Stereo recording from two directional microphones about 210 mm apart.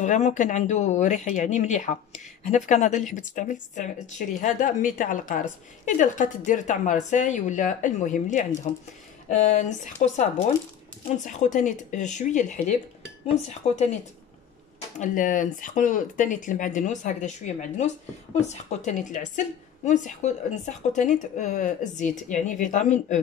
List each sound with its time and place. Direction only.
0.0 s speech: 35° left (ahead or behind)
15.0 s speech: 40° left (ahead or behind)